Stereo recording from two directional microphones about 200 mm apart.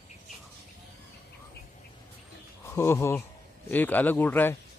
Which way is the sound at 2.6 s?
10° left (ahead or behind).